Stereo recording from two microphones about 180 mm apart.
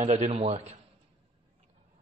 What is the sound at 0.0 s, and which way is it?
Speech, 40° right (ahead or behind).